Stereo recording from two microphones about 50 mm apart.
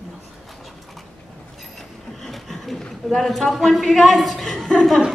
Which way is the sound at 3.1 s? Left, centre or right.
Centre.